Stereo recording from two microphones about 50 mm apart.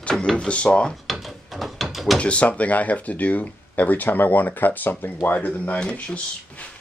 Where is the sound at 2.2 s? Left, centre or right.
Left.